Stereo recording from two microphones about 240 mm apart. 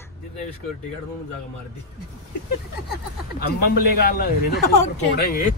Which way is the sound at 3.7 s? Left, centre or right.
Left.